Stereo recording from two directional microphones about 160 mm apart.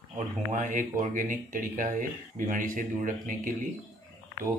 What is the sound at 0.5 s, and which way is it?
Speech, 55° right (ahead or behind).